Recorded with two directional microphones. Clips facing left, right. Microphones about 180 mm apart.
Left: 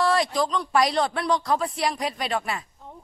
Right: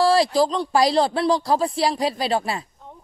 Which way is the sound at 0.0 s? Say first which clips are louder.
Right 5 dB; 30° right (ahead or behind).